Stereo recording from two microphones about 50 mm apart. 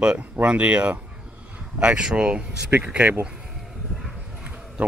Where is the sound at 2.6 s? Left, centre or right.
Right.